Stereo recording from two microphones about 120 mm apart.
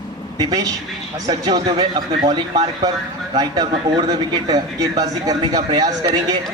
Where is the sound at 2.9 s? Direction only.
30° right (ahead or behind).